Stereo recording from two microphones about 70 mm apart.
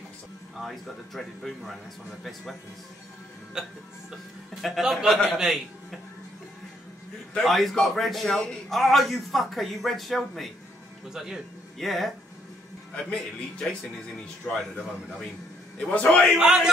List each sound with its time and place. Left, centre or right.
0.6 s a man's voice: centre
3.6 s a man's voice: centre
7.4 s a man's voice: centre
11.1 s a man's voice: centre
12.9 s speech: centre
15.9 s a man's voice: left
16.3 s a man's voice: centre